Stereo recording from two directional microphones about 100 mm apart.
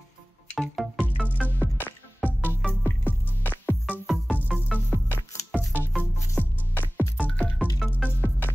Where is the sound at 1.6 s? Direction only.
20° left (ahead or behind).